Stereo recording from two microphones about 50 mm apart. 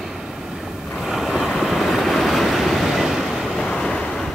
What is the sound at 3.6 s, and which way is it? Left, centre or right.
Vehicle, centre.